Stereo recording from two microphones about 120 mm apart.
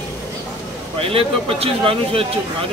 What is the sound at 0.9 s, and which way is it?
A man's voice, 50° right (ahead or behind).